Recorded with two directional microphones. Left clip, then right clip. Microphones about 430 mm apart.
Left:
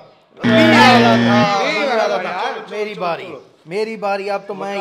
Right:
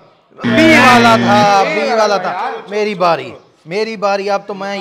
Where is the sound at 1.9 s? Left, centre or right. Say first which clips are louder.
Right 4 dB; right.